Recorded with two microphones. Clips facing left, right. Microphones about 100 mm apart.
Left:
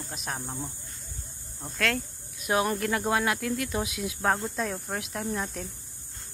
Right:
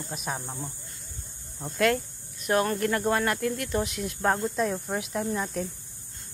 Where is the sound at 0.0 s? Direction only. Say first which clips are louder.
Right 2 dB; centre (ahead or behind).